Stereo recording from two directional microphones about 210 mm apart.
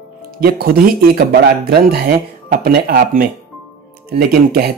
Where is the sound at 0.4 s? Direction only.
45° right (ahead or behind).